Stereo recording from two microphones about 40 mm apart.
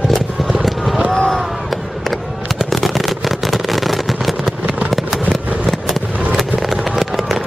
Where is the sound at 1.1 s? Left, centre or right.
Centre.